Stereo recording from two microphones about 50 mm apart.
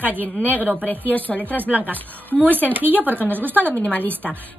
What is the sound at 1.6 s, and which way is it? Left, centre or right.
Speech, right.